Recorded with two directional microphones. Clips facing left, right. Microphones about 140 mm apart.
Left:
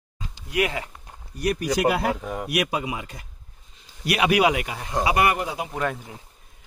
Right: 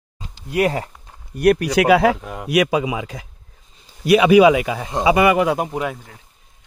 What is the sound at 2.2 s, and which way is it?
Speech, centre (ahead or behind).